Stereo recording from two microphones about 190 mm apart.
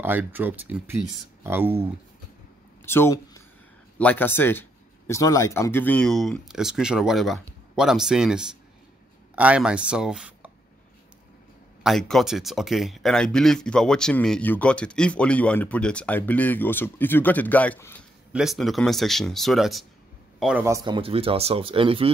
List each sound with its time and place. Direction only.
0.0 s speech: 10° right (ahead or behind)
2.8 s speech: 10° left (ahead or behind); by 10.5 s 5° right (ahead or behind)
11.8 s speech: centre (ahead or behind)
18.3 s speech: centre (ahead or behind)
20.6 s speech: 20° right (ahead or behind)